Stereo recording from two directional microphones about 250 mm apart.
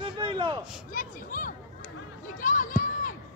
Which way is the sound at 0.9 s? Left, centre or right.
Left.